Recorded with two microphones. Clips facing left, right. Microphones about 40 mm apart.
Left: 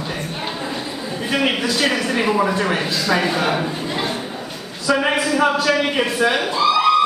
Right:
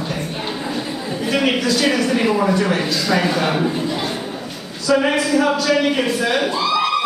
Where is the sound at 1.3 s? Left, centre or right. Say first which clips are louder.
Right 2 dB; left.